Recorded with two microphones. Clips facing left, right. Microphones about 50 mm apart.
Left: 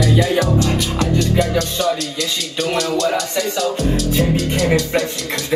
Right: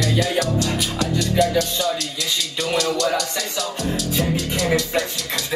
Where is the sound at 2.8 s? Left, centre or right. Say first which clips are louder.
Left 2 dB; left.